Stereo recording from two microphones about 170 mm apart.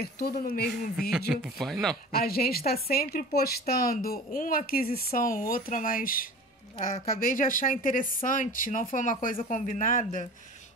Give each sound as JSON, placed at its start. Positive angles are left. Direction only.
{"t": 0.0, "sound": "a woman's voice", "side_deg": 60}
{"t": 1.3, "sound": "speech", "side_deg": 0}
{"t": 2.1, "sound": "a woman's voice", "side_deg": 60}